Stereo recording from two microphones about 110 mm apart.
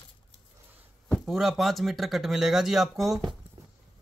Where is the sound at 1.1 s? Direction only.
5° right (ahead or behind).